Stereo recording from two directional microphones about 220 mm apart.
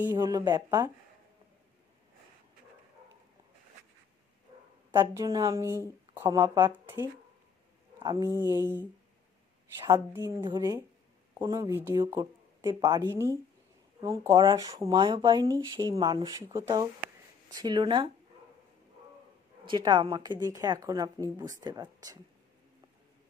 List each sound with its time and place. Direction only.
0.1 s speech: 15° right (ahead or behind)
4.9 s speech: 15° right (ahead or behind)
8.0 s speech: 15° right (ahead or behind)
9.8 s speech: 15° right (ahead or behind)
19.6 s speech: 20° right (ahead or behind)